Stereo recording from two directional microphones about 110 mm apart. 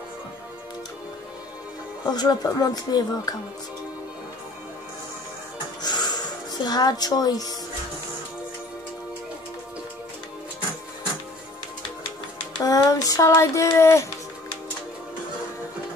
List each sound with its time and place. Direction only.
2.0 s speech: 40° left (ahead or behind)
5.8 s music: 40° left (ahead or behind)
12.5 s a sound: 35° left (ahead or behind)